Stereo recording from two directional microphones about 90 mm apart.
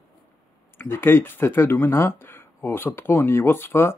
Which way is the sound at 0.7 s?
25° left (ahead or behind).